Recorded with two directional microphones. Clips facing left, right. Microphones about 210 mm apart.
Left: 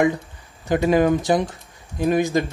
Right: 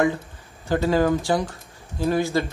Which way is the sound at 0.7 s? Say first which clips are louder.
Left 3 dB; 15° left (ahead or behind).